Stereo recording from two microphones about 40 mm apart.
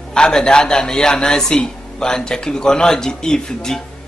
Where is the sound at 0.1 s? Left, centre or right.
Centre.